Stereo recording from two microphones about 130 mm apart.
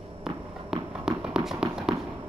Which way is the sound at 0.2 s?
5° right (ahead or behind).